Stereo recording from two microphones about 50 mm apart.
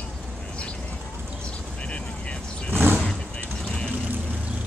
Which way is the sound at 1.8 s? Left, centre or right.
Left.